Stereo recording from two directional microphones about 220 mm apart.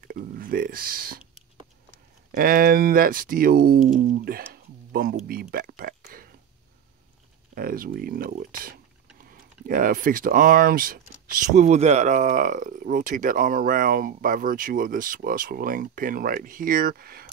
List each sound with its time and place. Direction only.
0.0 s speech: 40° right (ahead or behind)
2.3 s speech: 40° right (ahead or behind)
7.5 s speech: 40° right (ahead or behind)